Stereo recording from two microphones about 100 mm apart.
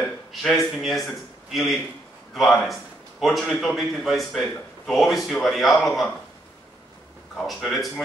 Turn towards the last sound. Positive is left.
turn(degrees=0)  # may be behind; listen again after turning